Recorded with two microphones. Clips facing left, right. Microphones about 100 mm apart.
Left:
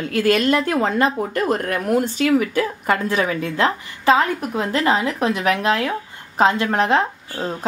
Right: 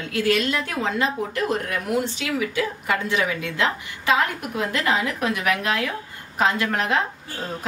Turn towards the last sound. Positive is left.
turn(degrees=30)  # may be behind; listen again after turning